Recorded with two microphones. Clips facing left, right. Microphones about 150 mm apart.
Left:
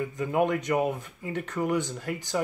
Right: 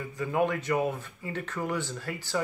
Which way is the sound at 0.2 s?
15° left (ahead or behind).